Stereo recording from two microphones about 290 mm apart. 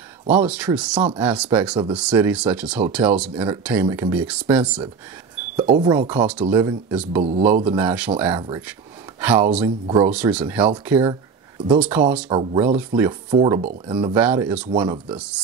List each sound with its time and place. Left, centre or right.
0.4 s speech: centre
5.6 s speech: centre
6.0 s speech: centre
7.2 s speech: right
7.7 s speech: centre
9.8 s speech: centre
10.1 s speech: centre
12.3 s speech: centre
14.1 s speech: centre